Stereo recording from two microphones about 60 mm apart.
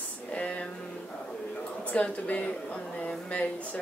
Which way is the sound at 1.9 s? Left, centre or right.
Left.